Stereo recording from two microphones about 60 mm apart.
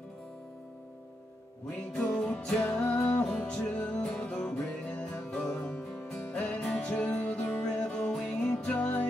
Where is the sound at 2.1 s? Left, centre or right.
Centre.